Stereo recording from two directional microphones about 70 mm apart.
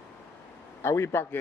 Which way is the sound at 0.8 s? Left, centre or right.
Left.